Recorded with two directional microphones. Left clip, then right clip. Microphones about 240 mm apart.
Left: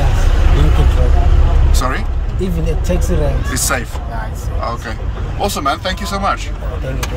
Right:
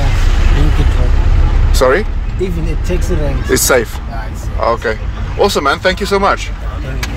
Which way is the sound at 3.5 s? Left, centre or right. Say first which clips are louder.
Right 8 dB; centre.